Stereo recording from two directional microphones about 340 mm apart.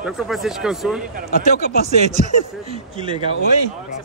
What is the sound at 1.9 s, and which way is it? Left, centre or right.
Speech, centre.